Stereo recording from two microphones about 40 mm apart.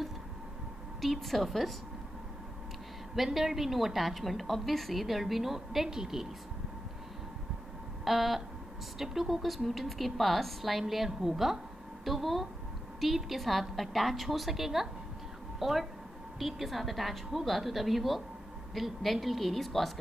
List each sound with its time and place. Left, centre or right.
1.0 s a woman's voice: centre
3.2 s a woman's voice: centre
8.0 s a sound: centre
8.9 s a woman's voice: centre